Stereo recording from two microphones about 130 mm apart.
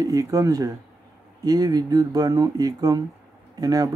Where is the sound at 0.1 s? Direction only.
25° right (ahead or behind).